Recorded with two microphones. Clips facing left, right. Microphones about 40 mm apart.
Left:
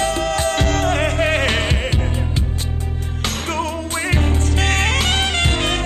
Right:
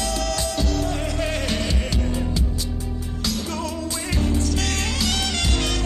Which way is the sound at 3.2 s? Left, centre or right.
Left.